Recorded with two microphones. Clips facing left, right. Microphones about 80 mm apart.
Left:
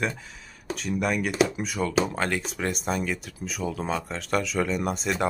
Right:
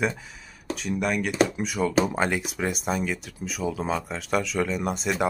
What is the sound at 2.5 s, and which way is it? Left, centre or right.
Speech, centre.